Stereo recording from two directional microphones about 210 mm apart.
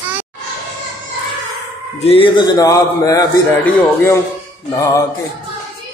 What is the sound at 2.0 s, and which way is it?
A man's voice, 30° left (ahead or behind).